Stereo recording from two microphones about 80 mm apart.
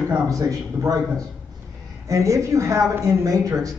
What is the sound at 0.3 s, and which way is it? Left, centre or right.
A man's voice, right.